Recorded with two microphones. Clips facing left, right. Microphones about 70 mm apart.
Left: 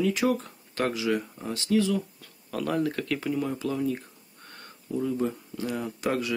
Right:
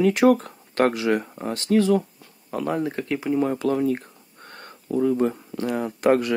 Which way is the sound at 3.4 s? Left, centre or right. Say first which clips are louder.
Right 7 dB; right.